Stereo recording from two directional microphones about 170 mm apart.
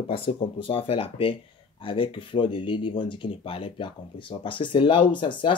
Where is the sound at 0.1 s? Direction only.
30° left (ahead or behind).